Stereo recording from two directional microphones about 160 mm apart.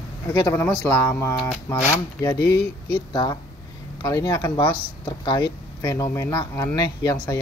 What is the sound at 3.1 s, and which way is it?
Speech, 25° left (ahead or behind).